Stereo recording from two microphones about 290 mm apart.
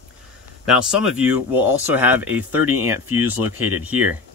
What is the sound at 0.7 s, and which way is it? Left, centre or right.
Speech, centre.